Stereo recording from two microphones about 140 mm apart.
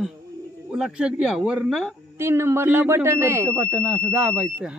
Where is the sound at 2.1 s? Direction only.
20° right (ahead or behind).